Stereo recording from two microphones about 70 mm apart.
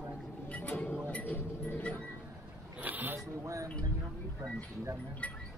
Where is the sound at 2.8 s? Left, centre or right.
Right.